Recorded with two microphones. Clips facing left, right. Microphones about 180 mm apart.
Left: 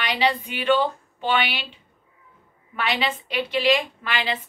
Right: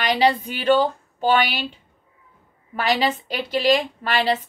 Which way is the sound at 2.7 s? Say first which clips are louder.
Right 4 dB; 40° right (ahead or behind).